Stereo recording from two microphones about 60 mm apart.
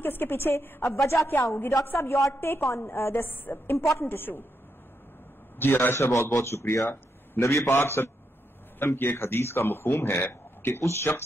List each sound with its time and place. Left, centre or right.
0.0 s speech: left
0.9 s a man's voice: left
5.6 s a man's voice: left
10.8 s a man's voice: left